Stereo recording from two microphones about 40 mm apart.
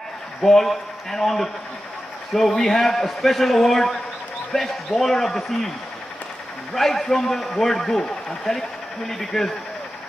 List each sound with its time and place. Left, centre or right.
0.4 s a man's voice: centre
6.7 s a man's voice: centre